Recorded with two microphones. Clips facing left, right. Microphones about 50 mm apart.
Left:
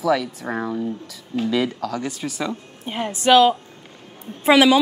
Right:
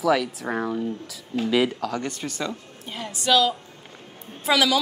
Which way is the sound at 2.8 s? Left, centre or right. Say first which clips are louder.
Left 6 dB; left.